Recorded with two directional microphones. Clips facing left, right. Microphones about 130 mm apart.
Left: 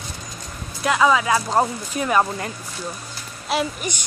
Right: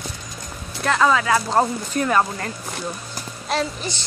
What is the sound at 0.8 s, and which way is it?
A woman's voice, 10° left (ahead or behind).